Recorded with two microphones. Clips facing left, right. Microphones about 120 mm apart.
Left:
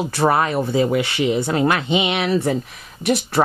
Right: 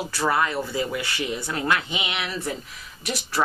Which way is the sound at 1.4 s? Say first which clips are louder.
Left 7 dB; 25° left (ahead or behind).